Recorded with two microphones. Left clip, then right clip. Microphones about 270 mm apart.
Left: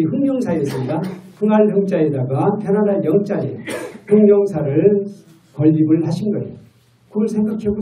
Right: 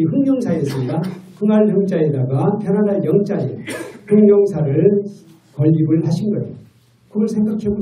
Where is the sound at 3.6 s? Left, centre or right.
Left.